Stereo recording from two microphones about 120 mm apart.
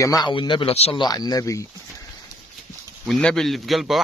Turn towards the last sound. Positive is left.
turn(degrees=0)  # may be behind; listen again after turning